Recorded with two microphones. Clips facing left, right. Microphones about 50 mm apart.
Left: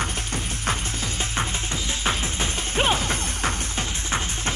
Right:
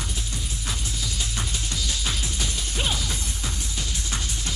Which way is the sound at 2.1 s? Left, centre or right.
Left.